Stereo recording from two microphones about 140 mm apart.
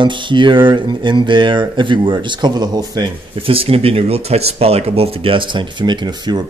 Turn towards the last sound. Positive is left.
turn(degrees=-30)  # may be behind; listen again after turning